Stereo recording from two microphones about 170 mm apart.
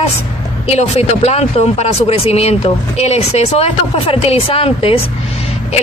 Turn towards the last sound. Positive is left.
turn(degrees=35)  # may be behind; listen again after turning